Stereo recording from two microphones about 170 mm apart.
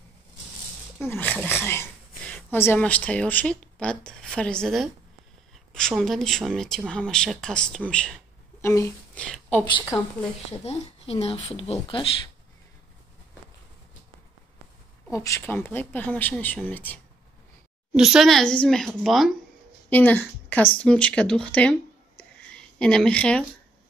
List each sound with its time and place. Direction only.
0.9 s a woman's voice: 10° left (ahead or behind)
10.6 s speech: 40° left (ahead or behind)
15.0 s speech: 20° left (ahead or behind)
17.9 s a woman's voice: 5° right (ahead or behind)
19.9 s speech: 10° left (ahead or behind)